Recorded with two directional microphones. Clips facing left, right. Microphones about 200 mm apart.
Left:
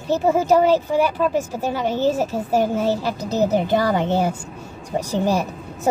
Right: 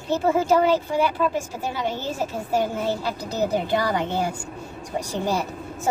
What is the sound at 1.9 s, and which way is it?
Speech, 45° left (ahead or behind).